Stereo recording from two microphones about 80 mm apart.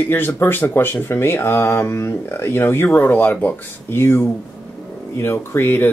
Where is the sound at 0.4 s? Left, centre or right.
Left.